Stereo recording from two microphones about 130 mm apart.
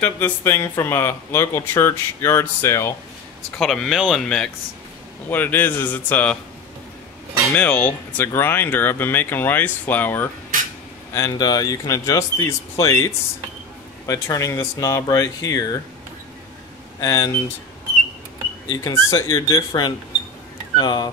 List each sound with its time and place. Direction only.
0.0 s speech: 20° left (ahead or behind)
3.5 s speech: 5° left (ahead or behind)
5.3 s speech: 15° left (ahead or behind)
7.5 s speech: 10° left (ahead or behind)
11.1 s speech: 30° left (ahead or behind)
17.0 s speech: 25° left (ahead or behind)
18.7 s speech: 25° left (ahead or behind)